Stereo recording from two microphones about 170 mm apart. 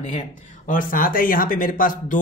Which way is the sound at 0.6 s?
55° left (ahead or behind).